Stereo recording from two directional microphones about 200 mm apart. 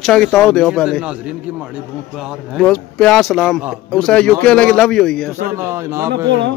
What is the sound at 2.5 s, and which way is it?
A man's voice, 5° left (ahead or behind).